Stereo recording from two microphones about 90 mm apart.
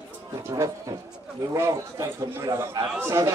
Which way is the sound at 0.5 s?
45° right (ahead or behind).